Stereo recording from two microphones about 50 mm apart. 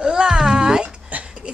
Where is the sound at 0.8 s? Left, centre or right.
Right.